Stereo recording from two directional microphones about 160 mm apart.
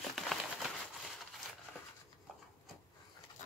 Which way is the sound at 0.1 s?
Centre (ahead or behind).